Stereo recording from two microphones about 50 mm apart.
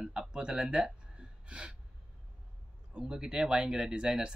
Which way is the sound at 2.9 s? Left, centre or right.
Centre.